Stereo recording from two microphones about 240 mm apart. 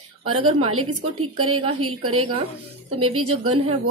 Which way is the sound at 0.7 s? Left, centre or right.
Right.